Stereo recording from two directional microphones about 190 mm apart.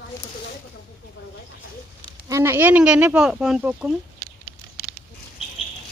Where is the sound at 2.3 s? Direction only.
15° right (ahead or behind).